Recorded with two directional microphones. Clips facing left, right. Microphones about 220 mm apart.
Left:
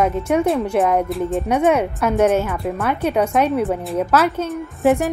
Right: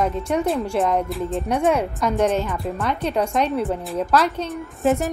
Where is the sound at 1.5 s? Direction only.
60° left (ahead or behind).